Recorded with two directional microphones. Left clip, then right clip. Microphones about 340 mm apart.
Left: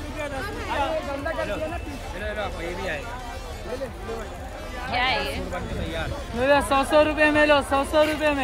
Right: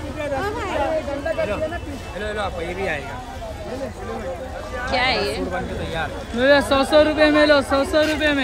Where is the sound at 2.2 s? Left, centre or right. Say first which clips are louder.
Right 5 dB; right.